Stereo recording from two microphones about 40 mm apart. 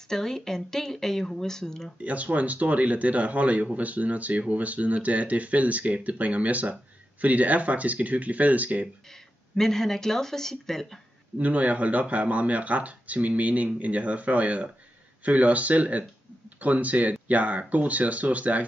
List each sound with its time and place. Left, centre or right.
0.1 s speech: centre
2.0 s speech: right
9.1 s speech: centre
11.3 s speech: right